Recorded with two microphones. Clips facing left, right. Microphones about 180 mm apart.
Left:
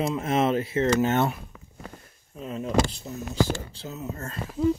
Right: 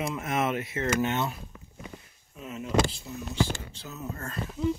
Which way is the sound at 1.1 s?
55° left (ahead or behind).